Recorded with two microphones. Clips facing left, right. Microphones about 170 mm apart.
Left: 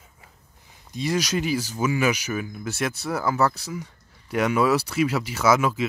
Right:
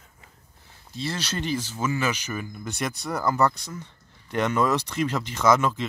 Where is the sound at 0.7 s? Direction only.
15° left (ahead or behind).